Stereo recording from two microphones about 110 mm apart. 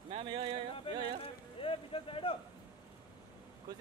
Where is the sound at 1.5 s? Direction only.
55° left (ahead or behind).